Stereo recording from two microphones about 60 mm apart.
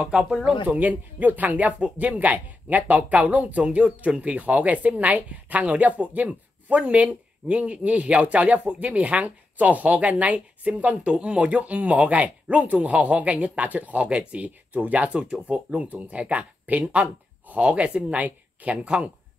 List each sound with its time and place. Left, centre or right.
0.0 s speech: centre
0.7 s speech: right